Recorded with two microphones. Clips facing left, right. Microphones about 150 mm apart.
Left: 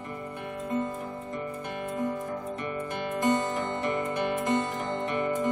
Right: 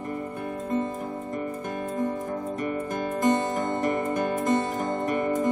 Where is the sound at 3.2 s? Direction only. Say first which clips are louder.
Right 2 dB; 40° right (ahead or behind).